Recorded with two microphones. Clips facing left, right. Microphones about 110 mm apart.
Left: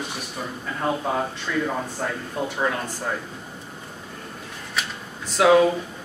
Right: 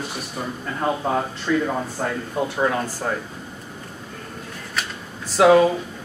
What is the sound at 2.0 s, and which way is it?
Speech, 5° right (ahead or behind).